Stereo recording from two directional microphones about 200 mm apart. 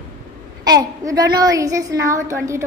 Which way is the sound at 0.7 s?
20° right (ahead or behind).